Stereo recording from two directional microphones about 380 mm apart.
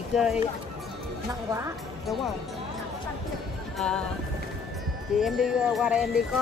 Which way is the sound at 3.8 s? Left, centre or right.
Centre.